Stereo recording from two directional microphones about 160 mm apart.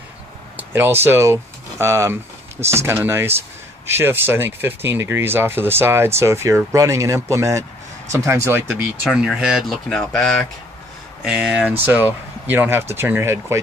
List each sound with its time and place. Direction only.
0.6 s speech: 15° right (ahead or behind)
9.0 s speech: 5° right (ahead or behind)